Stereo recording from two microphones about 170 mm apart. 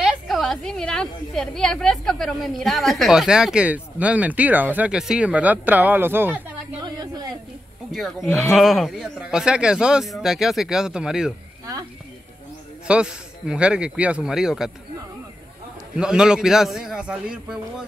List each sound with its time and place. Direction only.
0.0 s a woman's voice: centre (ahead or behind)
6.8 s a sound: 25° right (ahead or behind)
7.9 s a woman's voice: centre (ahead or behind)
12.8 s a woman's voice: 5° right (ahead or behind)
16.0 s a woman's voice: 5° right (ahead or behind)